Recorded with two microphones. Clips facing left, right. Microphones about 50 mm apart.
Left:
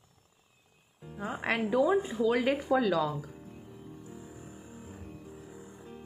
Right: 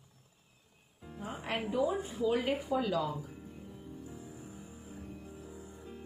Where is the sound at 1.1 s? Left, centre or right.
Left.